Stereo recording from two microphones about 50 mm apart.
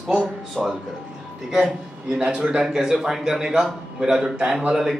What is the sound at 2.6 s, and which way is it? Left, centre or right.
Speech, centre.